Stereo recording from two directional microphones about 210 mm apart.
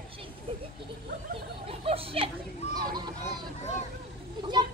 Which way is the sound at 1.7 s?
25° right (ahead or behind).